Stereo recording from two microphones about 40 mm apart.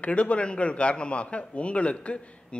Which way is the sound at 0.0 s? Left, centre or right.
Left.